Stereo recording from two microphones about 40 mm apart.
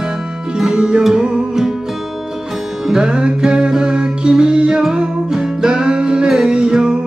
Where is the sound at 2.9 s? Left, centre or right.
Right.